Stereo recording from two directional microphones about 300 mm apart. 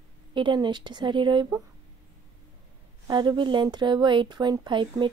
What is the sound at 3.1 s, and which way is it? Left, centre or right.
A woman's voice, centre.